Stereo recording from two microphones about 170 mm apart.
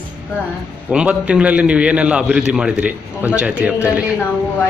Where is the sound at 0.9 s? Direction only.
5° right (ahead or behind).